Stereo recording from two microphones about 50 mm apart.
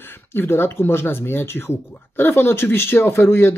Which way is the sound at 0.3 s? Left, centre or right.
Left.